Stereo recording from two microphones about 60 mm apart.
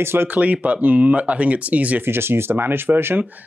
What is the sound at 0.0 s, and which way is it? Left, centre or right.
Speech, right.